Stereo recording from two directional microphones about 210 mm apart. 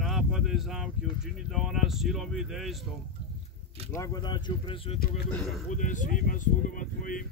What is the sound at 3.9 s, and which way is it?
Speech, 15° left (ahead or behind).